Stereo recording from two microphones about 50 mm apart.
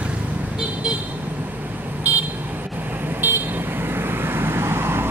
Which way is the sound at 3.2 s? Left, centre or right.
Right.